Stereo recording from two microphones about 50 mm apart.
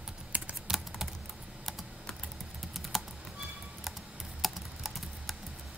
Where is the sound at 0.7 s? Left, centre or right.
Centre.